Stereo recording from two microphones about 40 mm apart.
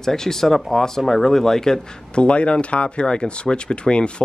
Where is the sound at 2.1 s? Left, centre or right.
Left.